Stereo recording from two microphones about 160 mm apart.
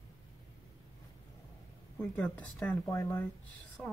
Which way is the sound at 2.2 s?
5° left (ahead or behind).